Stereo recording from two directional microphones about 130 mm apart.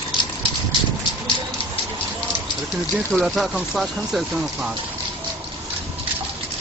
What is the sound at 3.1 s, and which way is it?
Speech, centre (ahead or behind).